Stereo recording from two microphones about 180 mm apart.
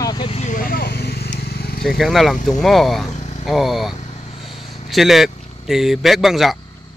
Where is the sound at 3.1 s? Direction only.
40° left (ahead or behind).